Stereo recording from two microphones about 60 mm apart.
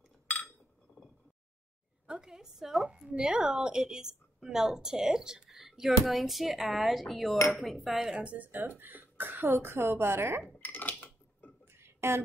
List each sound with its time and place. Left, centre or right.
2.0 s a woman's voice: centre
7.5 s dishes: centre
8.2 s speech: right
8.5 s speech: right
10.6 s a sound: left
11.6 s a sound: right